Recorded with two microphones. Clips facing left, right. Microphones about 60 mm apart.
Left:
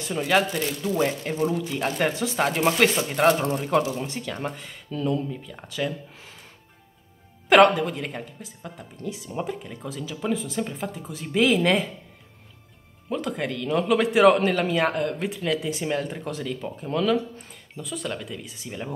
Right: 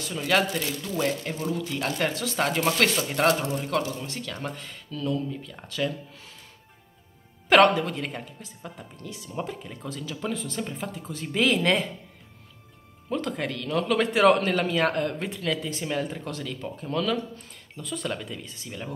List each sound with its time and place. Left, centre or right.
0.2 s speech: centre
4.9 s speech: left
7.4 s a woman's voice: centre
9.1 s a woman's voice: centre
13.1 s speech: centre
18.4 s speech: centre